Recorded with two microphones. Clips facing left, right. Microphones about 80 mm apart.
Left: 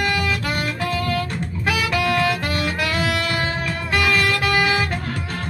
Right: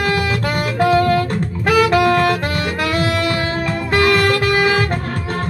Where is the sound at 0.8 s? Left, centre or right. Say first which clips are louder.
Right 13 dB; right.